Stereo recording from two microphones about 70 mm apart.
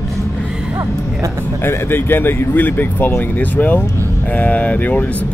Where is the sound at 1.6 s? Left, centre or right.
Left.